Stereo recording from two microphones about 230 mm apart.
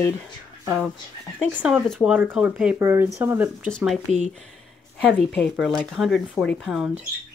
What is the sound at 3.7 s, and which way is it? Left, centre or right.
Speech, centre.